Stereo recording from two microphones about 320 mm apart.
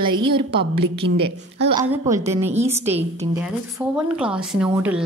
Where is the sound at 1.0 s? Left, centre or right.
Right.